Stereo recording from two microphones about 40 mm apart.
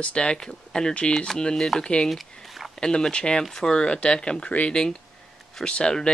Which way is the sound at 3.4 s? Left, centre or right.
Centre.